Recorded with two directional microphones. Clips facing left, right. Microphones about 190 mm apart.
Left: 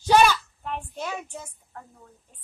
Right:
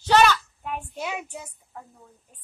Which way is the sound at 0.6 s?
10° right (ahead or behind).